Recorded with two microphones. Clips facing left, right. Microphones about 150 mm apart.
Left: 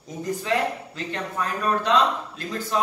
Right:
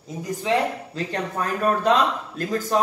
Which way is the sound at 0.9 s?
40° right (ahead or behind).